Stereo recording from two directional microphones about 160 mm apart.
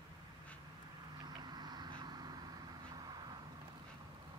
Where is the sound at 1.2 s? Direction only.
25° right (ahead or behind).